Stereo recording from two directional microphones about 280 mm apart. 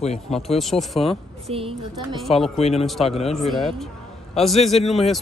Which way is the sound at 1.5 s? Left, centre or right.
Centre.